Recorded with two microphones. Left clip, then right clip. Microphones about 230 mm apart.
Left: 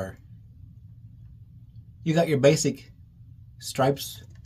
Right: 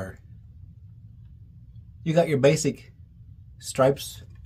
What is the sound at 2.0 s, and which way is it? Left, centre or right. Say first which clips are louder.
Speech: even; centre.